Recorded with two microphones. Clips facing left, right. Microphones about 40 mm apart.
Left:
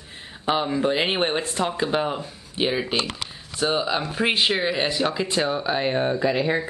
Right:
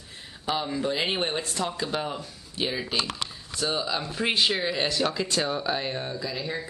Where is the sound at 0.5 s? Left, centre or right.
Left.